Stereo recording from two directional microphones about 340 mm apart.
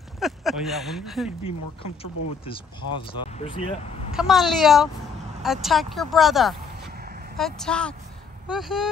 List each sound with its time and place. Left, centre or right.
0.2 s speech: centre
2.4 s speech: centre
4.1 s speech: centre